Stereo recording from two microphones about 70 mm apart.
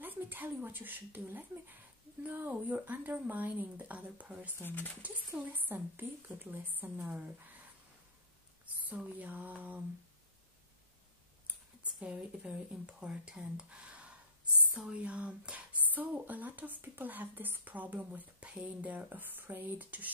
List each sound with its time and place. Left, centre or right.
0.0 s speech: right
4.6 s speech: left
5.0 s speech: right
8.6 s a sound: right
12.0 s speech: centre